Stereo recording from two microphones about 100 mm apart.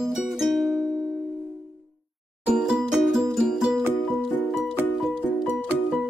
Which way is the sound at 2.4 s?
5° right (ahead or behind).